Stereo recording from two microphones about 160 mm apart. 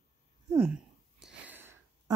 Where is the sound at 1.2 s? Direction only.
10° right (ahead or behind).